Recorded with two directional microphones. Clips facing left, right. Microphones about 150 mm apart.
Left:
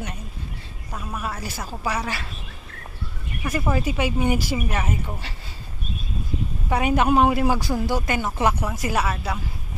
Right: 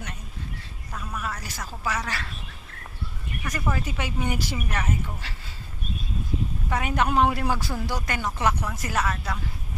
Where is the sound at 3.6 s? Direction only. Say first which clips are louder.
Left 6 dB; 15° left (ahead or behind).